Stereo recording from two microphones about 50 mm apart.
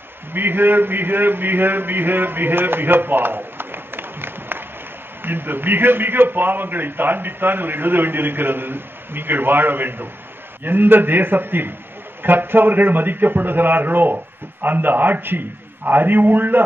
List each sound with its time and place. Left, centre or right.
0.3 s a man's voice: right